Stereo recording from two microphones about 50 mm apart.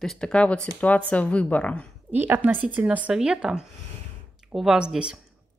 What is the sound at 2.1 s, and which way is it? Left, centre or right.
Speech, right.